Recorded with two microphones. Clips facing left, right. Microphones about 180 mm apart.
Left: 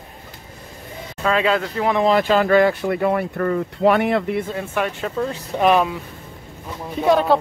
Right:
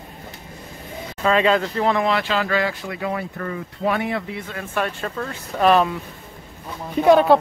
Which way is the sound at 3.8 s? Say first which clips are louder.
Left 6 dB; 70° left (ahead or behind).